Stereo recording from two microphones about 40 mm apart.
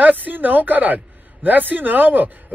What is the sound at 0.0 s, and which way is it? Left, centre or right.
A man's voice, right.